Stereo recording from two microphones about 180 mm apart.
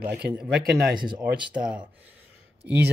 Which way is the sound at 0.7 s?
Centre (ahead or behind).